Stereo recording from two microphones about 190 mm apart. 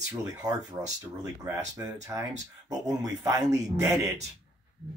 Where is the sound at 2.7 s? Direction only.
20° right (ahead or behind).